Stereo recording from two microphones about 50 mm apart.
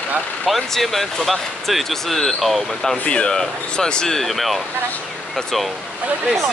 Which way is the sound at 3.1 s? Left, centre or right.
Centre.